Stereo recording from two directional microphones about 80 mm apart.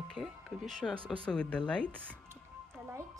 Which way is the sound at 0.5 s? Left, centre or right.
Centre.